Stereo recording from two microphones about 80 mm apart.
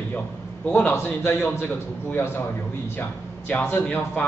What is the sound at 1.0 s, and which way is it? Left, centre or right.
Speech, left.